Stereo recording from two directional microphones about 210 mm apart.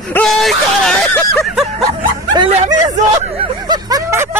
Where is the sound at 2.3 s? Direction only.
20° right (ahead or behind).